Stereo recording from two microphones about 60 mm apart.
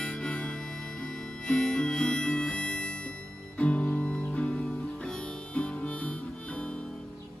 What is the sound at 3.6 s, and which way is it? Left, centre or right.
Music, left.